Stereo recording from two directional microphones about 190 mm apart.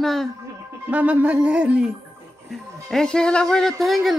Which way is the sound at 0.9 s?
10° right (ahead or behind).